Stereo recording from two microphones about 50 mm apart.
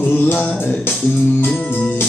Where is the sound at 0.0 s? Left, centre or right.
Left.